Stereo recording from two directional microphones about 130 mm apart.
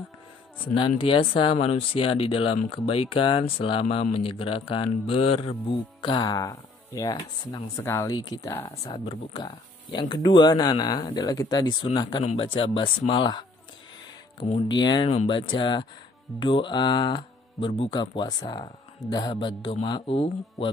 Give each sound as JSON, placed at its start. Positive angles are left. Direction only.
{"t": 0.7, "sound": "speech", "side_deg": 40}
{"t": 8.5, "sound": "speech", "side_deg": 20}
{"t": 8.8, "sound": "speech", "side_deg": 45}
{"t": 12.2, "sound": "speech", "side_deg": 50}
{"t": 14.7, "sound": "speech", "side_deg": 35}